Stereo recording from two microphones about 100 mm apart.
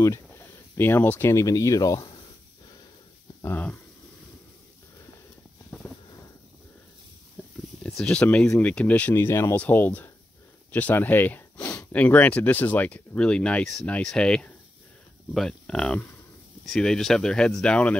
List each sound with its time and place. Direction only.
0.0 s speech: 25° left (ahead or behind)
1.3 s speech: 30° left (ahead or behind)
3.4 s speech: 20° left (ahead or behind)
7.4 s a sound: 15° left (ahead or behind)
7.8 s speech: 10° left (ahead or behind)
9.1 s speech: 25° left (ahead or behind); by 17.9 s 10° left (ahead or behind)